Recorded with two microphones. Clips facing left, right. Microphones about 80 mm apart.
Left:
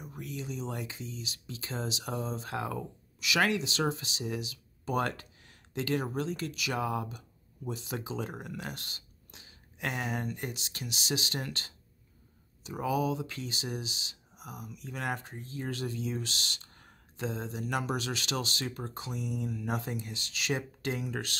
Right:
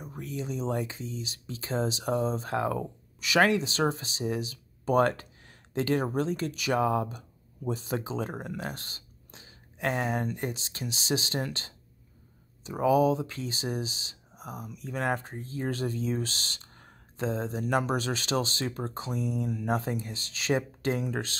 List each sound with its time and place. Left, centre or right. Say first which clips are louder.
0.0 s speech: right 4 dB; right